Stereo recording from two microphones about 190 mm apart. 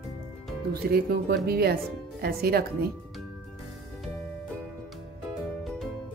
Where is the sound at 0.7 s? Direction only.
55° right (ahead or behind).